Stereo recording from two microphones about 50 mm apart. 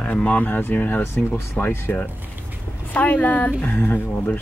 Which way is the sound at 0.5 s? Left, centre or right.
Left.